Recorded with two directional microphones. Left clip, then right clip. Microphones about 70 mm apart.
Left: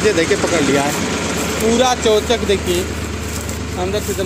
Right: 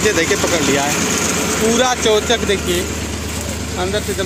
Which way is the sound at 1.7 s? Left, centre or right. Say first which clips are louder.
Left 2 dB; left.